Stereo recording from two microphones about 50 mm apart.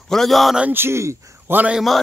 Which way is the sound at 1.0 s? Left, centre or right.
Right.